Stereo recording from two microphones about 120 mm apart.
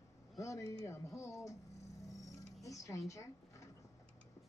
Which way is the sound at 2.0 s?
30° left (ahead or behind).